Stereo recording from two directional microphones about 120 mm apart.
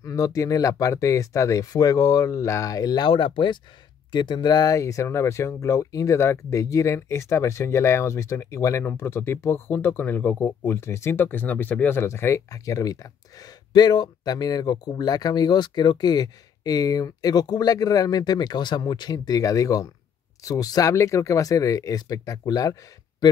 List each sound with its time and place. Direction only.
0.0 s speech: 30° left (ahead or behind)